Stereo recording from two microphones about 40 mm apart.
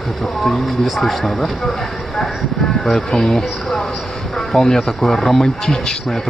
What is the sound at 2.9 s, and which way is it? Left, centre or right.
Speech, centre.